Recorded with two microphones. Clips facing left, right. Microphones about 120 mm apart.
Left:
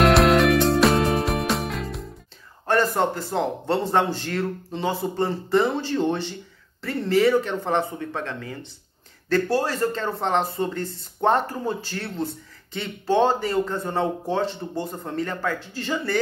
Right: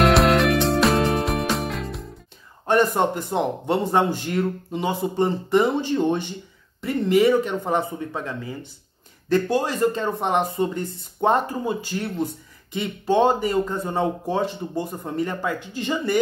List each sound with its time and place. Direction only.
0.0 s music: centre (ahead or behind)
2.6 s speech: 20° right (ahead or behind)